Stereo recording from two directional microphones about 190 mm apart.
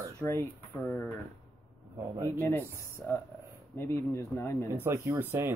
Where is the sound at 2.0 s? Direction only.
15° right (ahead or behind).